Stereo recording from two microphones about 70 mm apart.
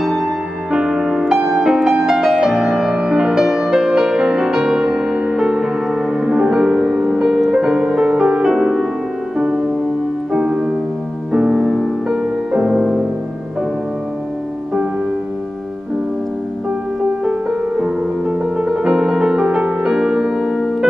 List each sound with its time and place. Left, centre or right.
0.0 s music: centre
17.2 s music: centre